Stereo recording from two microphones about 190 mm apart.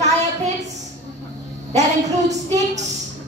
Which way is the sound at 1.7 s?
35° right (ahead or behind).